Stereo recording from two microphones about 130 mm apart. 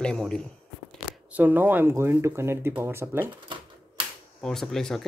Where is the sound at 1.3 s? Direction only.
15° right (ahead or behind).